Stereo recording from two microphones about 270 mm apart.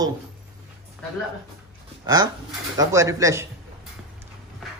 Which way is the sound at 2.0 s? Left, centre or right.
Centre.